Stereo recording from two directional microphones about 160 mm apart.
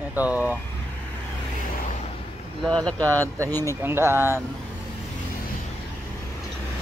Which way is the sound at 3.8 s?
15° right (ahead or behind).